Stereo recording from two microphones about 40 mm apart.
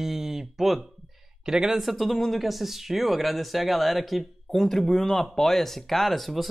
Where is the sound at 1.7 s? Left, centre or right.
Centre.